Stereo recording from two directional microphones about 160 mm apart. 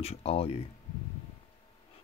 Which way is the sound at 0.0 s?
40° left (ahead or behind).